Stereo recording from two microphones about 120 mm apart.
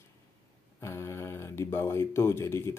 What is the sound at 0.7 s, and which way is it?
Speech, 25° left (ahead or behind).